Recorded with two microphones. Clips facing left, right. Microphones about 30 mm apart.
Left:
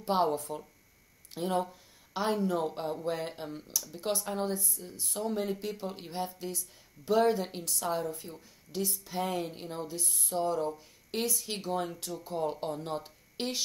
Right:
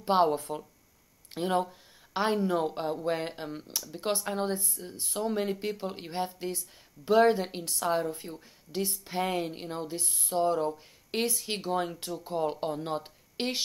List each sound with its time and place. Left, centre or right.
0.0 s speech: right